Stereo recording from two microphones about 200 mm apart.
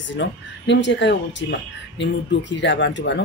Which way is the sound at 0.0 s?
65° left (ahead or behind).